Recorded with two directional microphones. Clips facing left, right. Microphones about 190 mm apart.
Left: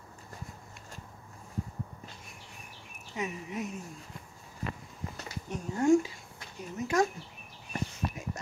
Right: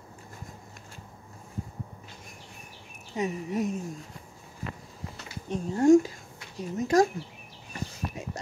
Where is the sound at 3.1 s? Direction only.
40° right (ahead or behind).